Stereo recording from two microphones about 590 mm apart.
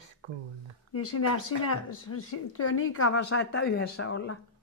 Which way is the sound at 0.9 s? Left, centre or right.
Left.